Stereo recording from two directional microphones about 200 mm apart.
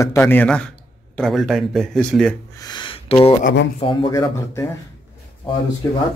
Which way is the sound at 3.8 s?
25° left (ahead or behind).